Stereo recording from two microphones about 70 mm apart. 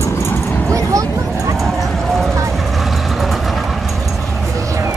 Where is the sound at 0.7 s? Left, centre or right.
Right.